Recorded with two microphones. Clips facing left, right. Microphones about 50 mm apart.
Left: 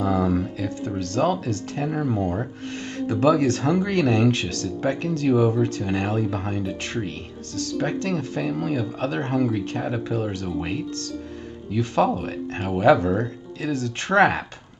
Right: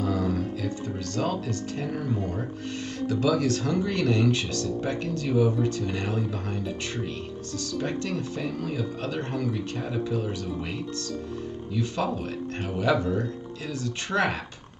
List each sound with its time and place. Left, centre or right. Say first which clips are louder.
0.0 s a sound: left 5 dB; left
0.6 s speech: left 4 dB; left
4.3 s speech: left 2 dB; left
5.8 s speech: left 5 dB; left
6.9 s speech: left 3 dB; left
12.6 s speech: left 8 dB; left